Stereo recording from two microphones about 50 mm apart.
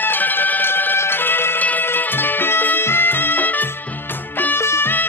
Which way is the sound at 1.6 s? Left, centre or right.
Left.